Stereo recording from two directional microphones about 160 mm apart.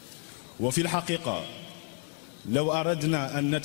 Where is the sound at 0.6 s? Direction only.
10° left (ahead or behind).